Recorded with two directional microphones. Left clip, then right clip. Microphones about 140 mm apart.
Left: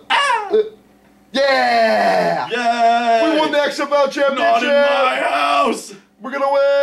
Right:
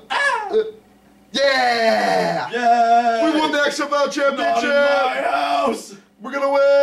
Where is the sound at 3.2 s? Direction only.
Centre (ahead or behind).